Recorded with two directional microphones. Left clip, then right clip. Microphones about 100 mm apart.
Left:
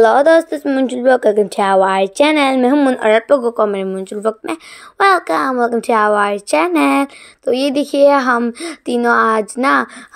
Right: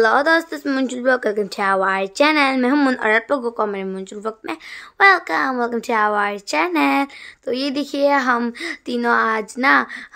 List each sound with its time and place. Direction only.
0.0 s speech: 30° left (ahead or behind)
2.7 s speech: 5° left (ahead or behind)
3.0 s speech: 30° left (ahead or behind)